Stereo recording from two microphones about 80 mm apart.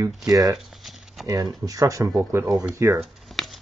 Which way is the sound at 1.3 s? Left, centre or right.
Right.